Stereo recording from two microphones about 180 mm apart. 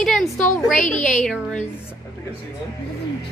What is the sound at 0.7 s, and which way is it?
Speech, 45° left (ahead or behind).